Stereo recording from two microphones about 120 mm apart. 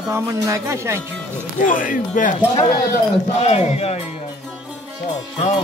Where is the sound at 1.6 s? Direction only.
90° left.